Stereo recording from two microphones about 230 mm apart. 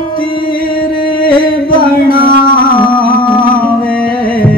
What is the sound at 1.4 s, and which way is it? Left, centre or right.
Music, left.